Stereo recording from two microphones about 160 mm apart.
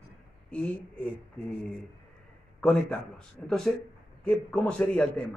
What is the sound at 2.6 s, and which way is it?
A man's voice, 5° left (ahead or behind).